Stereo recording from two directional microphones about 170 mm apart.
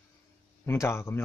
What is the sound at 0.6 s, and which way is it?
Speech, 15° left (ahead or behind).